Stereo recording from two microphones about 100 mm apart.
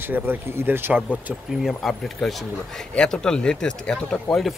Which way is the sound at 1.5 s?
Centre (ahead or behind).